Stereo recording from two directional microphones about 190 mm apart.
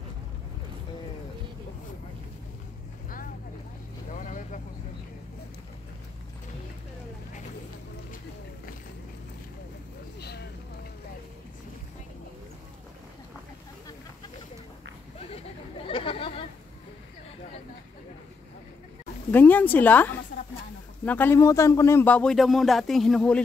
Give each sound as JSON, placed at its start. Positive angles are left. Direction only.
{"t": 4.1, "sound": "vehicle", "side_deg": 40}
{"t": 10.2, "sound": "vehicle", "side_deg": 60}
{"t": 15.9, "sound": "chatter", "side_deg": 30}
{"t": 19.3, "sound": "speech", "side_deg": 10}